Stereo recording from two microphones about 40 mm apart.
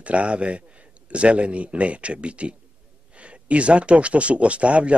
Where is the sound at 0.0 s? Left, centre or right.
Right.